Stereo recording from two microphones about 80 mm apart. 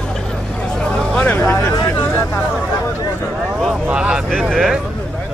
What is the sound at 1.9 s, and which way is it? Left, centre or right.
Hubbub, left.